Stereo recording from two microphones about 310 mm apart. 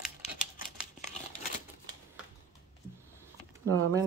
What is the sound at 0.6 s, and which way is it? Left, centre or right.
Crumpling, left.